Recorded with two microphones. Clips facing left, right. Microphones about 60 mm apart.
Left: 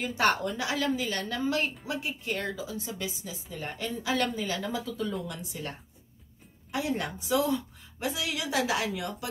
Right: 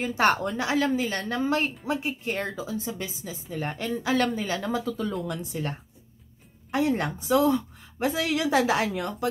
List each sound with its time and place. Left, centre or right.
0.0 s a woman's voice: right
3.5 s a woman's voice: right